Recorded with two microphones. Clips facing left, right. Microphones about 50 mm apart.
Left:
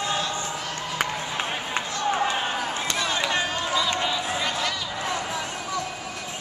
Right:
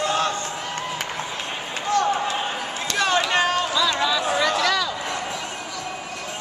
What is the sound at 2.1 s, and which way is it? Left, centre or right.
Basketball bounce, centre.